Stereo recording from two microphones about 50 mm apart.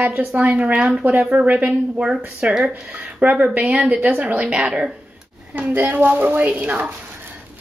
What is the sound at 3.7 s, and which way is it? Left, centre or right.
A woman's voice, right.